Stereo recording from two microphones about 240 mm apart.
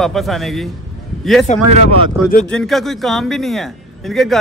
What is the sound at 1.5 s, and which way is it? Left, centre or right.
Speech, left.